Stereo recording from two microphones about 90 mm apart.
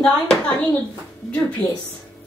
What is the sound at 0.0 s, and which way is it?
Speech, 10° left (ahead or behind).